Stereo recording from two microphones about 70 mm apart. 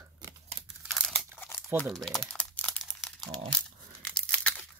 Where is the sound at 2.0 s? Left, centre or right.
Centre.